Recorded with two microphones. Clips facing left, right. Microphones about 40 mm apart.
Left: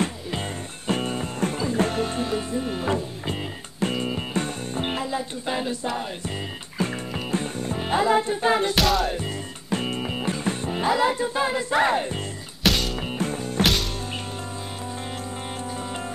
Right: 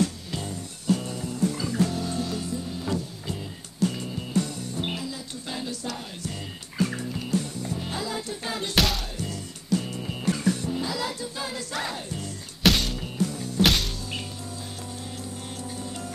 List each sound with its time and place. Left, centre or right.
0.0 s music: left
8.7 s speech: centre
9.1 s music: left
11.0 s speech: left
12.6 s music: centre
13.0 s music: left
13.6 s music: centre